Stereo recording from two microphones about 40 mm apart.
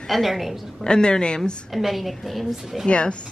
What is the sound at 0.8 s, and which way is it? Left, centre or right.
Speech, left.